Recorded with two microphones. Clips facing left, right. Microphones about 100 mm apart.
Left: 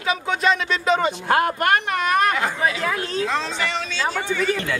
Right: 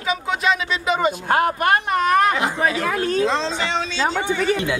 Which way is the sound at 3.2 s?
25° right (ahead or behind).